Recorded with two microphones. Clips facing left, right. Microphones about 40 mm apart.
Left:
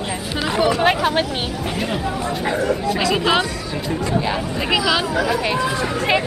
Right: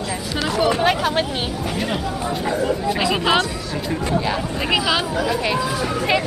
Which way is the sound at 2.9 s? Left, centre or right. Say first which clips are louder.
Even; centre.